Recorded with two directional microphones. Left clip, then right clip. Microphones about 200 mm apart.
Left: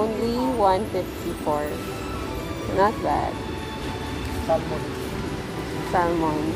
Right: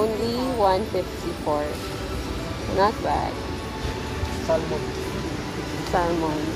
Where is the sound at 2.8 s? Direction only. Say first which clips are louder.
Even; 20° left (ahead or behind).